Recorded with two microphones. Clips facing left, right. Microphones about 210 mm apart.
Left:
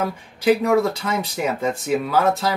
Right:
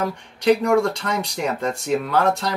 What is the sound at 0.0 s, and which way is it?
Speech, 5° left (ahead or behind).